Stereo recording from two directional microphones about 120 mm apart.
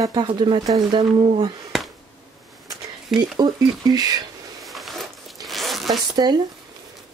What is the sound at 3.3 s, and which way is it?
Speech, 35° right (ahead or behind).